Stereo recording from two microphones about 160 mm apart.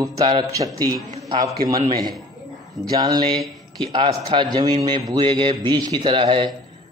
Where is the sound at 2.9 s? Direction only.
25° right (ahead or behind).